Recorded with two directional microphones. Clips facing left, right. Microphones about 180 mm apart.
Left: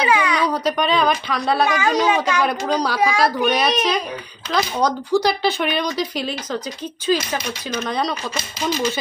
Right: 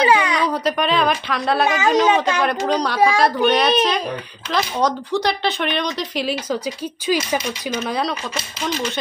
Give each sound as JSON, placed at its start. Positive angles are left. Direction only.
{"t": 0.0, "sound": "a sound", "side_deg": -25}
{"t": 0.5, "sound": "speech", "side_deg": 0}
{"t": 1.7, "sound": "speech", "side_deg": -20}
{"t": 2.4, "sound": "speech", "side_deg": 0}